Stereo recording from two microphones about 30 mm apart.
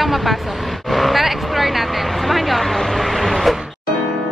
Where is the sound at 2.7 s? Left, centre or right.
Centre.